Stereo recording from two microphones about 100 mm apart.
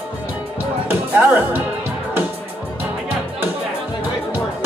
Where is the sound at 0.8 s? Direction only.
20° right (ahead or behind).